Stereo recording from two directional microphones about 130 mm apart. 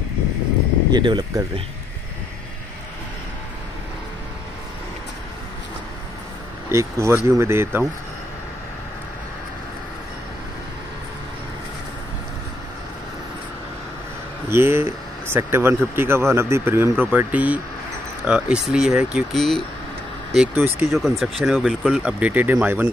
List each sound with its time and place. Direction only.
0.9 s speech: 35° right (ahead or behind)
6.7 s speech: 20° right (ahead or behind)
14.5 s speech: 20° right (ahead or behind); by 19.6 s centre (ahead or behind)
20.5 s speech: 15° right (ahead or behind)
20.9 s speech: centre (ahead or behind)